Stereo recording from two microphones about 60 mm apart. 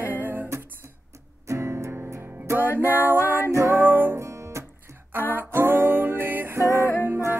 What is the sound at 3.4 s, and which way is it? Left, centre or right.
Music, right.